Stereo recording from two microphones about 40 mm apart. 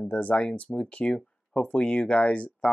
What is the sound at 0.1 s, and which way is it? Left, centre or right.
Speech, left.